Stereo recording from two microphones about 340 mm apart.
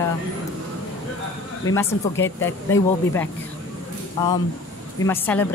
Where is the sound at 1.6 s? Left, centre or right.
Centre.